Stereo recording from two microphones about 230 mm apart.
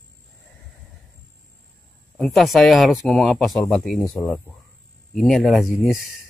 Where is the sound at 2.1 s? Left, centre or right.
Centre.